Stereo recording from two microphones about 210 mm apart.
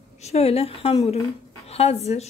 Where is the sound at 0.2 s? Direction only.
30° left (ahead or behind).